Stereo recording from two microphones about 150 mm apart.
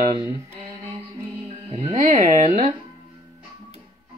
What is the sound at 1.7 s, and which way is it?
Speech, 45° right (ahead or behind).